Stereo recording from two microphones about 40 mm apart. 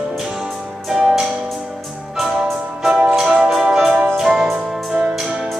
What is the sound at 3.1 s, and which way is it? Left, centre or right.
Music, centre.